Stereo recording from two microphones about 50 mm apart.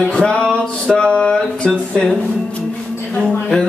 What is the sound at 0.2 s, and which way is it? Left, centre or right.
Music, centre.